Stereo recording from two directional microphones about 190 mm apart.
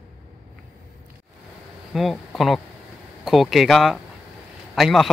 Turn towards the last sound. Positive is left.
turn(degrees=0)  # may be behind; listen again after turning